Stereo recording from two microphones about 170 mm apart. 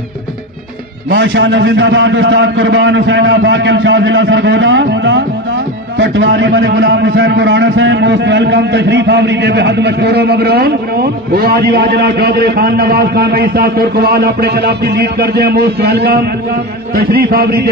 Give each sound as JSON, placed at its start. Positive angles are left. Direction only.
{"t": 1.1, "sound": "a man's voice", "side_deg": -90}
{"t": 16.9, "sound": "a man's voice", "side_deg": -60}